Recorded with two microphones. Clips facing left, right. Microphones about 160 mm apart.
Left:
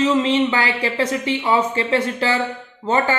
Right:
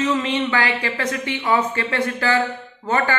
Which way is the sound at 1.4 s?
20° left (ahead or behind).